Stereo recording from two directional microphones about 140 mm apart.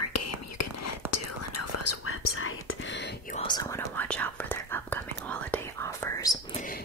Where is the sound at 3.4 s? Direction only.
30° left (ahead or behind).